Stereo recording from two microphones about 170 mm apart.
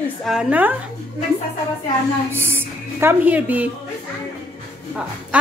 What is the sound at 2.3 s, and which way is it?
Speech, 15° right (ahead or behind).